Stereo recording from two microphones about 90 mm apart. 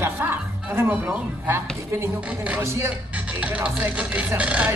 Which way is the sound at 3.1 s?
15° right (ahead or behind).